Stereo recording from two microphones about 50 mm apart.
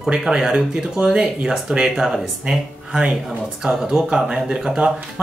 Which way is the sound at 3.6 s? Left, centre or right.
Right.